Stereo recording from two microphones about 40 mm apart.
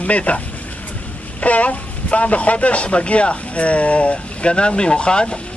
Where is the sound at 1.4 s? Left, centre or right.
Left.